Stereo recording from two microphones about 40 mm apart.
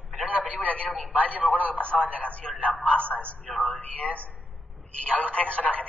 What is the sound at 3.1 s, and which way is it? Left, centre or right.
Speech, right.